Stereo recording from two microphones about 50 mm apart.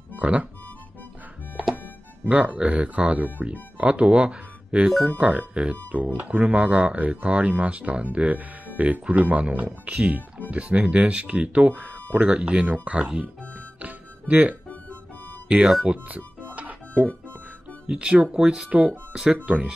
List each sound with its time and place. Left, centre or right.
0.1 s speech: right
2.2 s speech: right
4.8 s speech: centre
5.1 s speech: right
5.9 s speech: right
13.7 s music: right
15.6 s speech: centre
15.9 s music: right
17.8 s speech: right
19.3 s speech: right